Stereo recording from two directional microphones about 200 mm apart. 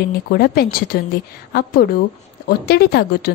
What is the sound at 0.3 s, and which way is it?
A woman's voice, 50° left (ahead or behind).